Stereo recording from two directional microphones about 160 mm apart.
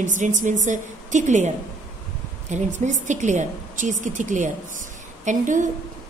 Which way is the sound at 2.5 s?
50° right (ahead or behind).